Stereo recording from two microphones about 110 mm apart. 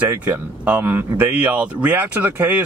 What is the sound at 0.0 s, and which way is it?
Speech, 15° right (ahead or behind).